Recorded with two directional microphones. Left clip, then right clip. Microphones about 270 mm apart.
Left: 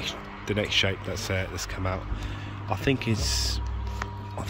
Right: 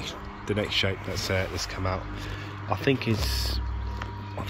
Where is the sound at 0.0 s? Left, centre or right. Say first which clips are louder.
Left 2 dB; centre.